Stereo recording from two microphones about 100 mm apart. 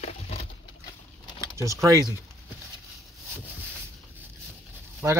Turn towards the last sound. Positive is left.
turn(degrees=-25)  # may be behind; listen again after turning